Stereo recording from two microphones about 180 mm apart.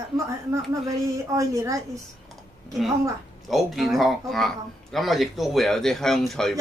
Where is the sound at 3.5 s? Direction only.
Centre (ahead or behind).